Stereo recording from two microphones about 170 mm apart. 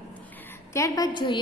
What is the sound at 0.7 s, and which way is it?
Speech, 20° left (ahead or behind).